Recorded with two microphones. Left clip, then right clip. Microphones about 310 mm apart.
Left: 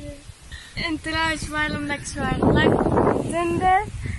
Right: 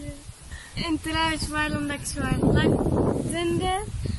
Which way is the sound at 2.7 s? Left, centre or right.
Left.